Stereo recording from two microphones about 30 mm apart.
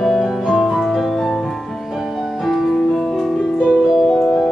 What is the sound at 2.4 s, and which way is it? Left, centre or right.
Music, centre.